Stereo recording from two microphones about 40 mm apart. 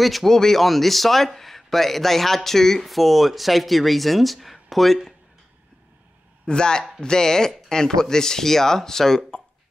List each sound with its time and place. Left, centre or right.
0.0 s a man's voice: centre
6.4 s speech: left